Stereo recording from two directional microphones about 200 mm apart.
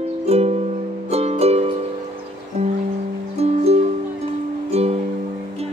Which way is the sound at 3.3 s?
30° right (ahead or behind).